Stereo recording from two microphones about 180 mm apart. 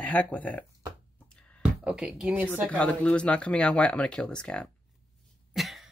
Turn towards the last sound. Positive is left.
turn(degrees=0)  # may be behind; listen again after turning